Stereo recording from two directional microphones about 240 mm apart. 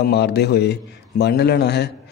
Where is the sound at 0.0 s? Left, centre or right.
Left.